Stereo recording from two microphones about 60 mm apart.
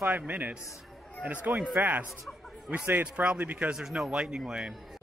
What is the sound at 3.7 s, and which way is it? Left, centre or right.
Speech, centre.